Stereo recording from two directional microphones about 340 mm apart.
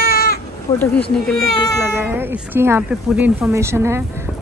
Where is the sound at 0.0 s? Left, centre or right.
Left.